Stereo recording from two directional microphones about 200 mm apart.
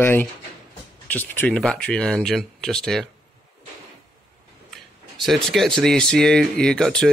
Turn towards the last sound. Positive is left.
turn(degrees=5)  # may be behind; listen again after turning